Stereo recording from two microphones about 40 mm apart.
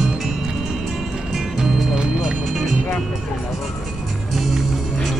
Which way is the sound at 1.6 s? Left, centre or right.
Centre.